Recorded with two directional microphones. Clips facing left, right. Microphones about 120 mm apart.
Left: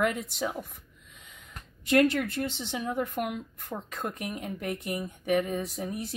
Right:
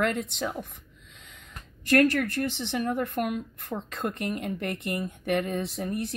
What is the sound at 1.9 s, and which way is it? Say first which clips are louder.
Speech: right 1 dB; 15° left (ahead or behind).